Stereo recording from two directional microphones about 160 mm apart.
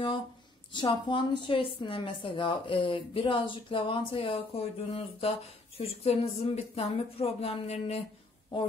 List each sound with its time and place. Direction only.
0.7 s a woman's voice: 30° left (ahead or behind)